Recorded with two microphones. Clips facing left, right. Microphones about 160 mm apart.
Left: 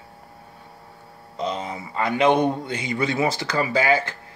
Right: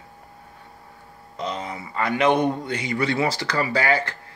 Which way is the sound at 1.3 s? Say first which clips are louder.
Left 2 dB; 25° left (ahead or behind).